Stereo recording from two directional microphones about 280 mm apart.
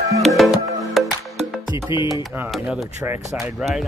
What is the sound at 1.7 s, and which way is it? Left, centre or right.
Music, centre.